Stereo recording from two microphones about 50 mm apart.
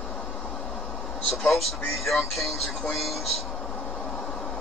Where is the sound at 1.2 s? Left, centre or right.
Centre.